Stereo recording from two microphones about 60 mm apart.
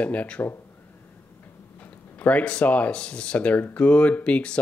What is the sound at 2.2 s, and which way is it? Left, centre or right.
Speech, left.